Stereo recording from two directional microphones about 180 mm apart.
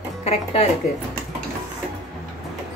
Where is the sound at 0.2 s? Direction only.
35° left (ahead or behind).